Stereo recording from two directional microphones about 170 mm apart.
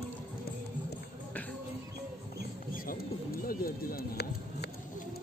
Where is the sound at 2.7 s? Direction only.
55° left (ahead or behind).